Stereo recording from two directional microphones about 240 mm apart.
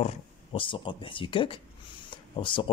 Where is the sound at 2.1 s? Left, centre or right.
Centre.